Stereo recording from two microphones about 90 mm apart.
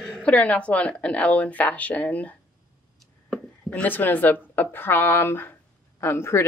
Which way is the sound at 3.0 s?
10° left (ahead or behind).